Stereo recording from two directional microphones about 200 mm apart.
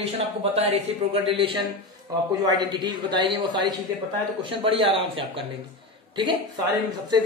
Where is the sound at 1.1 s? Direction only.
25° right (ahead or behind).